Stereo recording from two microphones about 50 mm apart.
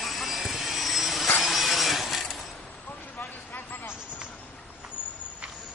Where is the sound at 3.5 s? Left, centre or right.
Left.